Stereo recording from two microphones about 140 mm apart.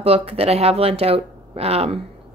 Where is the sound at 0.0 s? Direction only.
45° right (ahead or behind).